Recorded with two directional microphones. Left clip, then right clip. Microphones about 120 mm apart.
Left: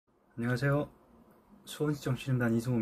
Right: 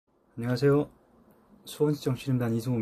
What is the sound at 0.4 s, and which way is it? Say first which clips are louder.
Speech: right 7 dB; 40° right (ahead or behind).